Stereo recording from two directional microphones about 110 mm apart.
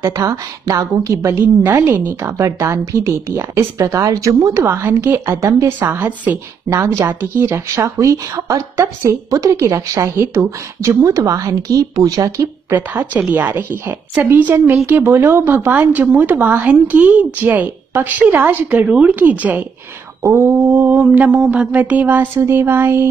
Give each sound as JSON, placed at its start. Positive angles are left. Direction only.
{"t": 0.0, "sound": "speech", "side_deg": -30}
{"t": 5.8, "sound": "speech", "side_deg": -15}
{"t": 12.7, "sound": "speech", "side_deg": -15}